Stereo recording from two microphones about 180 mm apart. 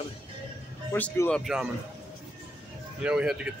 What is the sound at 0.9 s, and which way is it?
Speech, 10° left (ahead or behind).